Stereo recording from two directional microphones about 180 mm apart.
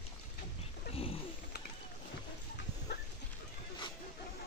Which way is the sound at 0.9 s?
30° left (ahead or behind).